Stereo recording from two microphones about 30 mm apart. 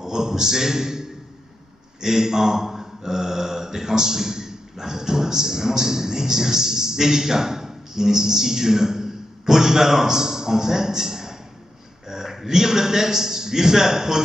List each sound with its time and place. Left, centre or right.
0.0 s a man's voice: centre
2.0 s a sound: centre
12.4 s a man's voice: centre